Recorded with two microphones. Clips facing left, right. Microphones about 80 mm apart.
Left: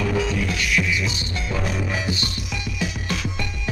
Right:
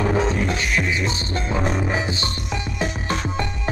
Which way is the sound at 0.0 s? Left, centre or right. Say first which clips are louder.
Right 3 dB; right.